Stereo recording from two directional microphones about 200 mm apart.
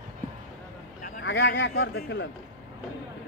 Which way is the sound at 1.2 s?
60° left (ahead or behind).